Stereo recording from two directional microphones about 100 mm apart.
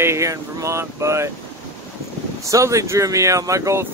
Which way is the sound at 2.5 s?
30° right (ahead or behind).